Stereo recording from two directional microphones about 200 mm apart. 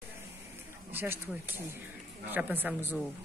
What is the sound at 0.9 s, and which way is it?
Speech, 10° right (ahead or behind).